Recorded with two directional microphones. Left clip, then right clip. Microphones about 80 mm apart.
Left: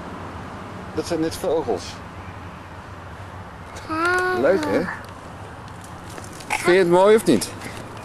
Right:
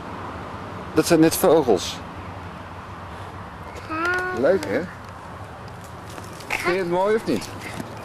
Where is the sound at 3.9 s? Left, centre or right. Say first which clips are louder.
Left 3 dB; left.